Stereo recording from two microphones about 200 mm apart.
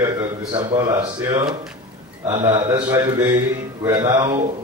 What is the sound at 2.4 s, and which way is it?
A man's voice, 20° right (ahead or behind).